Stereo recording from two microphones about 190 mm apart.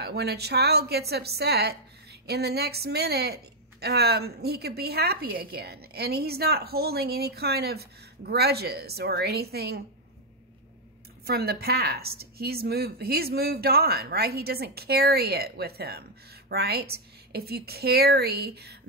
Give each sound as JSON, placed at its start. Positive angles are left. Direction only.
{"t": 0.0, "sound": "a woman's voice", "side_deg": -60}
{"t": 11.2, "sound": "a woman's voice", "side_deg": -55}